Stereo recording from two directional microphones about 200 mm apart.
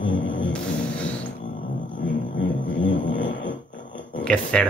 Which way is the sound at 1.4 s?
40° left (ahead or behind).